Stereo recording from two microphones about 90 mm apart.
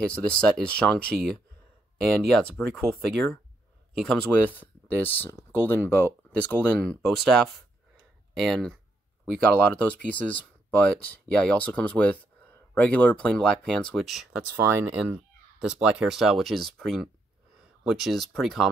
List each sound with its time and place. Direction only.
0.0 s speech: 15° left (ahead or behind)
2.3 s speech: 5° left (ahead or behind)
4.5 s speech: 20° left (ahead or behind)
6.8 s speech: centre (ahead or behind)
9.8 s speech: 15° left (ahead or behind)
14.0 s speech: 5° right (ahead or behind)
14.5 s speech: 25° right (ahead or behind)
15.0 s speech: 10° right (ahead or behind)